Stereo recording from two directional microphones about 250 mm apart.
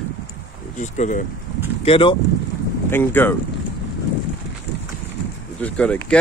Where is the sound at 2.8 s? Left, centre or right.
Centre.